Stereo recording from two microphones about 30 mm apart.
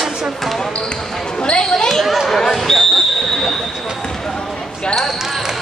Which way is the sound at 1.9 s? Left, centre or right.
Centre.